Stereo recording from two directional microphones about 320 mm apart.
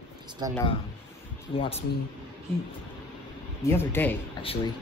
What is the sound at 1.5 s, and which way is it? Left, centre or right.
Speech, centre.